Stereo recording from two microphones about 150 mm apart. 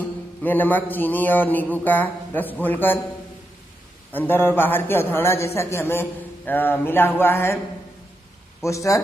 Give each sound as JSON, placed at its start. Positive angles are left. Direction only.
{"t": 0.0, "sound": "a man's voice", "side_deg": 10}
{"t": 4.1, "sound": "a man's voice", "side_deg": 15}
{"t": 8.6, "sound": "speech", "side_deg": 20}